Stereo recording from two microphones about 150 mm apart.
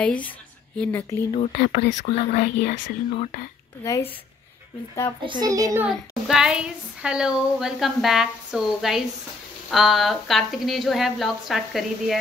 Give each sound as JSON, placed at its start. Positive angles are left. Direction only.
{"t": 0.7, "sound": "speech", "side_deg": 10}
{"t": 1.3, "sound": "speech", "side_deg": 45}
{"t": 1.6, "sound": "speech", "side_deg": 90}
{"t": 2.0, "sound": "speech", "side_deg": 55}
{"t": 3.8, "sound": "speech", "side_deg": 20}
{"t": 5.2, "sound": "a child's voice", "side_deg": -30}
{"t": 5.9, "sound": "speech", "side_deg": -5}